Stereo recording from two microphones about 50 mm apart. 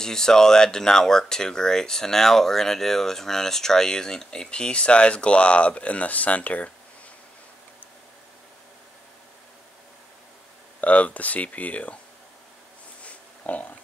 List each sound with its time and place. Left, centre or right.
0.0 s speech: centre; by 6.7 s left
10.8 s speech: left
13.0 s pig: left